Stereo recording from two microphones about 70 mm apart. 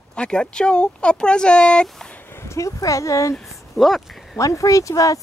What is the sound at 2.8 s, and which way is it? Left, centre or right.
Speech, left.